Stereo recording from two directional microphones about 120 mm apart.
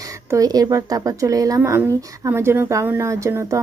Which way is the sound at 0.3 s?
30° right (ahead or behind).